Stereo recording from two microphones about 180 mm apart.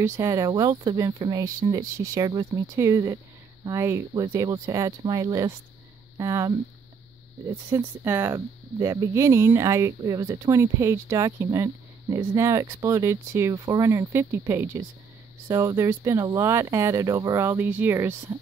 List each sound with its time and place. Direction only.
0.0 s speech: 15° right (ahead or behind)